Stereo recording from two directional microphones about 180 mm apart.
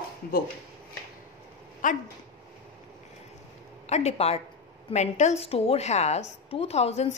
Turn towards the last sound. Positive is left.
turn(degrees=35)  # may be behind; listen again after turning